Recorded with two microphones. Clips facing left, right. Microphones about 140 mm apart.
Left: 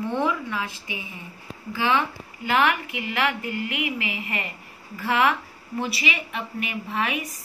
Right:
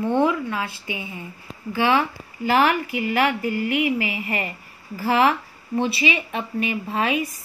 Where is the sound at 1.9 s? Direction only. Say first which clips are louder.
Right 2 dB; 35° right (ahead or behind).